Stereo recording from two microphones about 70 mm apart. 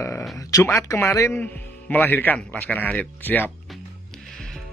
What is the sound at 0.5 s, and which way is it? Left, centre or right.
Speech, left.